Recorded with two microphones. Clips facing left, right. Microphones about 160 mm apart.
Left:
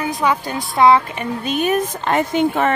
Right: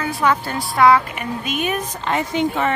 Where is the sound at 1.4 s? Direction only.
35° left (ahead or behind).